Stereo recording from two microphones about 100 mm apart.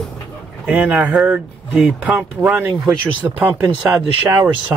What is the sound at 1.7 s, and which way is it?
Speech, 5° left (ahead or behind).